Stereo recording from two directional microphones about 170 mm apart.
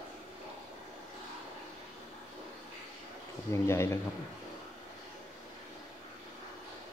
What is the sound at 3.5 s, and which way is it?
Speech, 15° left (ahead or behind).